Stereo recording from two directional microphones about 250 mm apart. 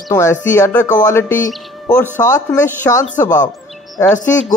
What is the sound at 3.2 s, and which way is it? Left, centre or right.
Speech, left.